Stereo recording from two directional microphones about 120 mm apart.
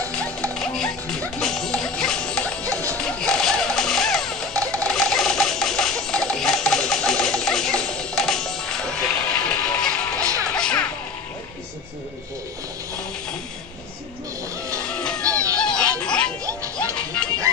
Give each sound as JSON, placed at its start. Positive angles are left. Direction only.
{"t": 0.1, "sound": "music", "side_deg": 5}
{"t": 2.7, "sound": "music", "side_deg": -25}
{"t": 3.0, "sound": "music", "side_deg": 5}
{"t": 4.8, "sound": "a sound", "side_deg": 5}
{"t": 10.4, "sound": "music", "side_deg": 10}
{"t": 14.8, "sound": "music", "side_deg": 5}
{"t": 15.2, "sound": "fowl", "side_deg": -30}
{"t": 15.6, "sound": "a sound", "side_deg": 5}
{"t": 16.7, "sound": "music", "side_deg": 10}